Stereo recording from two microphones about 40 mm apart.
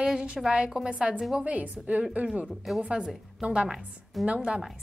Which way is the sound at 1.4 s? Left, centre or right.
Right.